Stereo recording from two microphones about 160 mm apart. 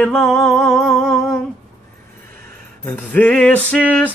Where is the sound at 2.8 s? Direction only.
10° left (ahead or behind).